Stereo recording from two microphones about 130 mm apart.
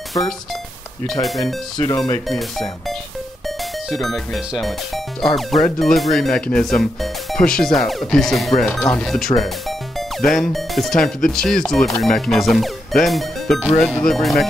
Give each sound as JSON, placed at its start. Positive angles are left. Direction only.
{"t": 0.2, "sound": "music", "side_deg": 25}
{"t": 1.2, "sound": "speech", "side_deg": 0}